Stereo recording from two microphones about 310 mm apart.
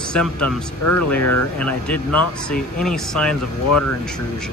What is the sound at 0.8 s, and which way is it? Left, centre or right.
Speech, left.